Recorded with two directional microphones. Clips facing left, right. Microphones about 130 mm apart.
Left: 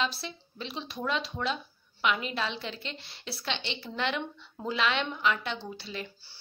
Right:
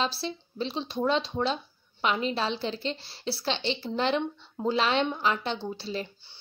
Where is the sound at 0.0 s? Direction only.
30° right (ahead or behind).